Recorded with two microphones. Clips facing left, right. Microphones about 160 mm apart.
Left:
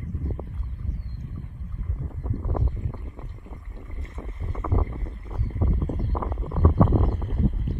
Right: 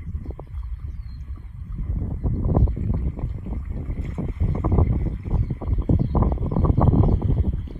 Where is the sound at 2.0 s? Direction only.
25° right (ahead or behind).